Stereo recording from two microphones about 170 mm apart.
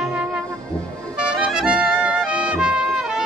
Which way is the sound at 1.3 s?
5° right (ahead or behind).